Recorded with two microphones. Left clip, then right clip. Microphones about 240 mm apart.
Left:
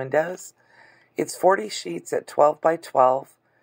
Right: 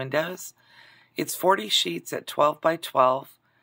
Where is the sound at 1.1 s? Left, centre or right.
Right.